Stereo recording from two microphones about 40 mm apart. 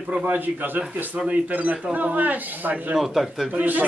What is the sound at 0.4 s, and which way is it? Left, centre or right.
Speech, right.